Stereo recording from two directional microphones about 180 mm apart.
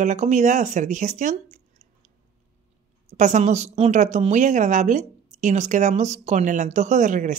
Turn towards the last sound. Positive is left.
turn(degrees=-45)  # may be behind; listen again after turning